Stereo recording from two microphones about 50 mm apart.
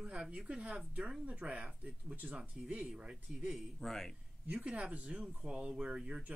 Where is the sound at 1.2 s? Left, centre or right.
Right.